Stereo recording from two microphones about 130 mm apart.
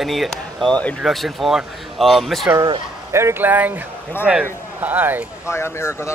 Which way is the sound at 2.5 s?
35° right (ahead or behind).